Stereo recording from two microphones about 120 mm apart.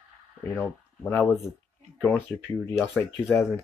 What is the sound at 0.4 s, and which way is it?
Speech, 20° left (ahead or behind).